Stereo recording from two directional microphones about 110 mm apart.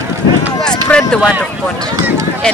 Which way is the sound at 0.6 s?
10° left (ahead or behind).